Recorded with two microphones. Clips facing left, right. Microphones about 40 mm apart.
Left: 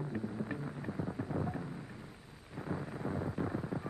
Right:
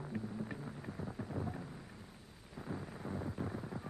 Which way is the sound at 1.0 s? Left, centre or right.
Centre.